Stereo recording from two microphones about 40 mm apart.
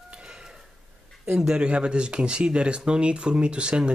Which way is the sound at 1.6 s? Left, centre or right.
Right.